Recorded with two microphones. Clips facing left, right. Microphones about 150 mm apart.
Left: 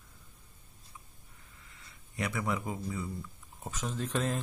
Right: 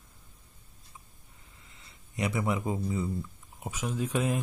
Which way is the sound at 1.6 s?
20° right (ahead or behind).